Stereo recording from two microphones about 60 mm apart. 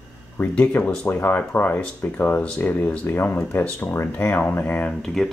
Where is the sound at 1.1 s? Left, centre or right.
Left.